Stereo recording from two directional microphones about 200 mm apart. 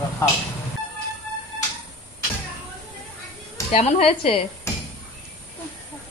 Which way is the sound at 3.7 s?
30° left (ahead or behind).